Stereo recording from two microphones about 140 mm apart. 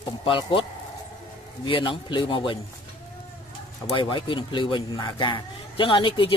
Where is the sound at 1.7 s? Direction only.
35° left (ahead or behind).